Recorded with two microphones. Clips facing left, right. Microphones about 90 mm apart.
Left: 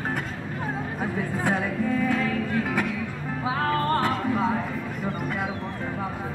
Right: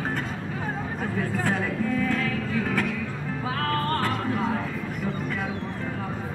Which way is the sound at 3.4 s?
15° left (ahead or behind).